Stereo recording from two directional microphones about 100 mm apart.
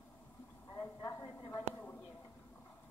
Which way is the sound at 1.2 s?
50° left (ahead or behind).